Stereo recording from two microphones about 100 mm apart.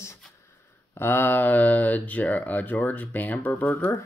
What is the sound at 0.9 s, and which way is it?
Speech, 25° left (ahead or behind).